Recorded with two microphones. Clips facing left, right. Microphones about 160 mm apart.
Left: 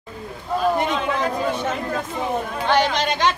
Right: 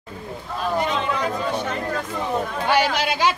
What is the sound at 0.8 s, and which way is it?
Chatter, centre (ahead or behind).